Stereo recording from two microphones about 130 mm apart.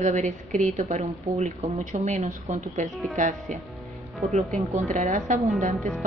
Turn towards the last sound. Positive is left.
turn(degrees=0)  # may be behind; listen again after turning